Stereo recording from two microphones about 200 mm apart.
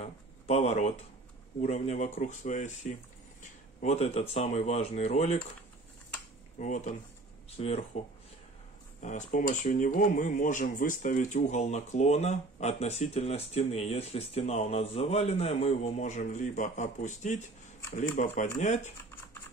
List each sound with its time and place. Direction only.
0.0 s a sound: 30° left (ahead or behind)
1.6 s speech: 35° left (ahead or behind)
6.6 s speech: 40° left (ahead or behind)
9.0 s speech: 40° left (ahead or behind)